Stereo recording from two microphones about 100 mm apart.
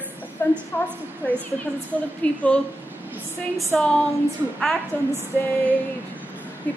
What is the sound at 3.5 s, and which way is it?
Speech, 5° left (ahead or behind).